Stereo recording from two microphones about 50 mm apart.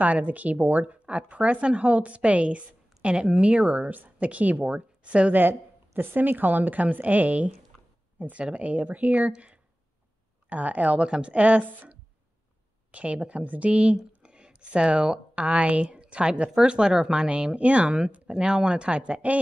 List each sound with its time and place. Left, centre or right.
0.0 s speech: right
3.6 s speech: right
5.3 s a woman's voice: right
12.9 s speech: right